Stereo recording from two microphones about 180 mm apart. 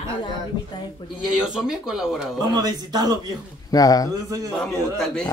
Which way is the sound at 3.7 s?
20° left (ahead or behind).